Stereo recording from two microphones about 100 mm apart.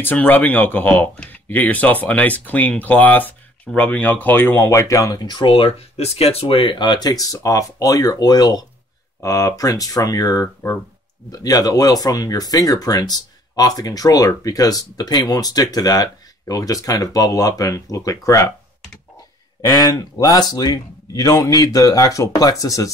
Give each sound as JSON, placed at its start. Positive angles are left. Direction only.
{"t": 0.0, "sound": "speech", "side_deg": 20}
{"t": 5.2, "sound": "speech", "side_deg": 50}
{"t": 5.5, "sound": "speech", "side_deg": 80}
{"t": 19.6, "sound": "speech", "side_deg": 40}